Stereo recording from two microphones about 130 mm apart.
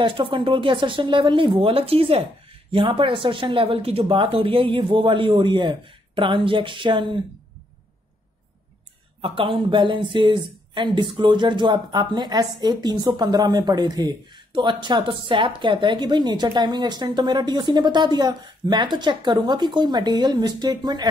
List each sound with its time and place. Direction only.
0.0 s speech: 40° right (ahead or behind)
9.2 s speech: 45° right (ahead or behind)